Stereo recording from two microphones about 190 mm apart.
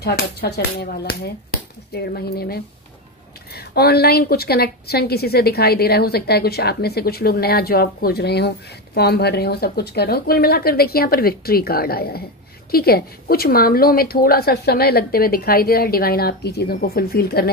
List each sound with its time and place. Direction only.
0.0 s a woman's voice: 60° left (ahead or behind)